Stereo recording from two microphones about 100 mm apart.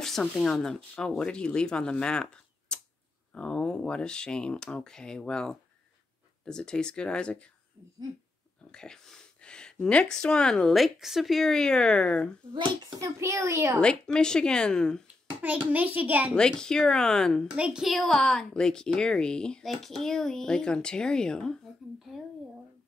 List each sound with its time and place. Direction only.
0.0 s a woman's voice: 5° left (ahead or behind)
8.7 s a woman's voice: 5° left (ahead or behind)
12.5 s a child's voice: 50° right (ahead or behind)
13.0 s a child's voice: 30° right (ahead or behind)
13.7 s a woman's voice: 10° left (ahead or behind)
15.4 s a child's voice: 15° right (ahead or behind)
16.3 s a woman's voice: 5° left (ahead or behind)
17.6 s a woman's voice: 5° right (ahead or behind)